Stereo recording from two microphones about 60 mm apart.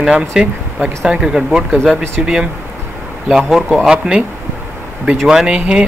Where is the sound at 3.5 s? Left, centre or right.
Centre.